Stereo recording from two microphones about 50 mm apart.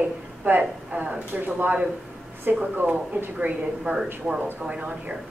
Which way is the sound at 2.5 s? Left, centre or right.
Right.